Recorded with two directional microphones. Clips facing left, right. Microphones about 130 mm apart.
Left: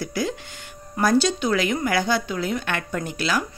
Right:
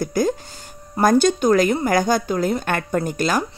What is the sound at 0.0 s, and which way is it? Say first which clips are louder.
Speech: right 6 dB; 45° right (ahead or behind).